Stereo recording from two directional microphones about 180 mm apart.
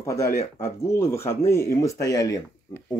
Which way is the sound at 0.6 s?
15° left (ahead or behind).